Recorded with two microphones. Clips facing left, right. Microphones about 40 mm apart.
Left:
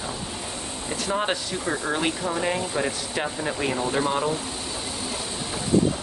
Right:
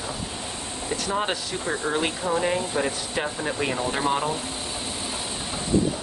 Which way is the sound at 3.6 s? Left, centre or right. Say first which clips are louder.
Left 2 dB; right.